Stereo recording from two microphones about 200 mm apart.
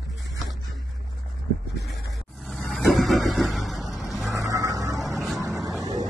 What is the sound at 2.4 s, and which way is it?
Vehicle, centre (ahead or behind).